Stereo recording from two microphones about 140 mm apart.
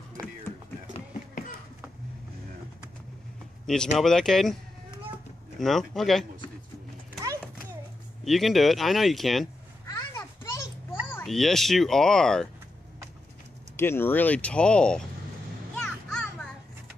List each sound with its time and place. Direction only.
0.2 s a sound: 25° right (ahead or behind)
3.6 s speech: 5° left (ahead or behind)
5.6 s speech: centre (ahead or behind)
8.2 s speech: centre (ahead or behind)
9.8 s a sound: 25° left (ahead or behind)
11.2 s speech: centre (ahead or behind)
13.7 s speech: 15° left (ahead or behind)
15.7 s music: 5° left (ahead or behind)